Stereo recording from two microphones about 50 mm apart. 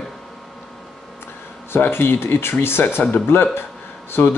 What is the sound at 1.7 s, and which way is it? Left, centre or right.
Mantra, left.